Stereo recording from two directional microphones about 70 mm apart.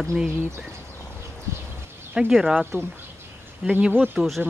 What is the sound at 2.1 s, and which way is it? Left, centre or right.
Speech, centre.